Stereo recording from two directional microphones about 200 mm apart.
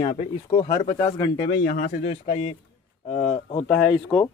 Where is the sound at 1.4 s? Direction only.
45° left (ahead or behind); by 3.7 s 30° left (ahead or behind).